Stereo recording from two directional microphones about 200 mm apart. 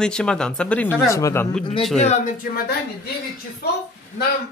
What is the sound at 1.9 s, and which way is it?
Speech, 35° left (ahead or behind).